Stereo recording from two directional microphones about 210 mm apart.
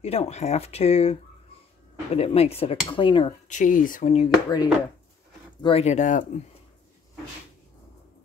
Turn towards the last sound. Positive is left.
turn(degrees=35)  # may be behind; listen again after turning